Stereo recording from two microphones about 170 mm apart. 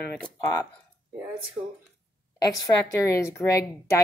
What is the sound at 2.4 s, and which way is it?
Speech, 20° left (ahead or behind).